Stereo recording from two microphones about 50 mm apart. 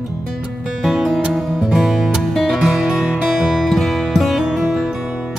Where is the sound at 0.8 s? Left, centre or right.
Centre.